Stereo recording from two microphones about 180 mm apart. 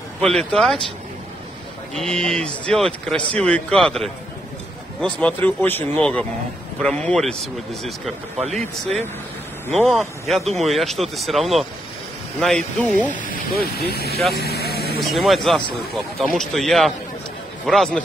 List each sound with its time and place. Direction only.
0.2 s speech: centre (ahead or behind)
2.0 s speech: 5° left (ahead or behind)
13.1 s speech: 50° left (ahead or behind)
14.3 s vehicle: 60° left (ahead or behind)
15.0 s speech: centre (ahead or behind)